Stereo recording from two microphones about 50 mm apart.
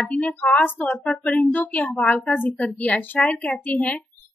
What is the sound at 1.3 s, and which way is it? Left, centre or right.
A woman's voice, left.